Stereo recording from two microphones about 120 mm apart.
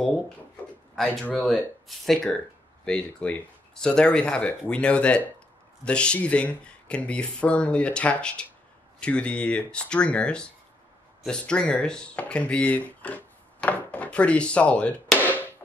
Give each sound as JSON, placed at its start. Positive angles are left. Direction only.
{"t": 0.9, "sound": "speech", "side_deg": 10}